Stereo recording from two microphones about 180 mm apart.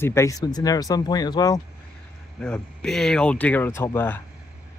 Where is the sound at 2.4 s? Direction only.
5° left (ahead or behind).